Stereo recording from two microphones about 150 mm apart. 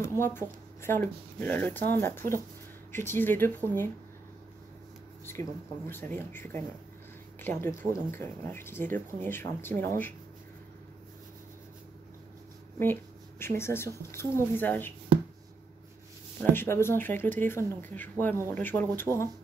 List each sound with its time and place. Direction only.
0.2 s speech: 15° left (ahead or behind)
5.2 s speech: 15° left (ahead or behind)
12.7 s speech: 15° left (ahead or behind)
16.5 s speech: 15° left (ahead or behind)